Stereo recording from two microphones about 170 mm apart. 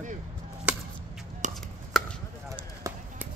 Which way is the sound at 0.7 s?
5° right (ahead or behind).